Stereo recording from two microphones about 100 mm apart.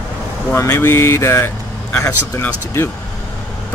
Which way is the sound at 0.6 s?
25° left (ahead or behind).